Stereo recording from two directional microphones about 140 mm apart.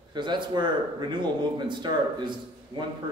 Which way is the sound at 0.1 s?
35° right (ahead or behind).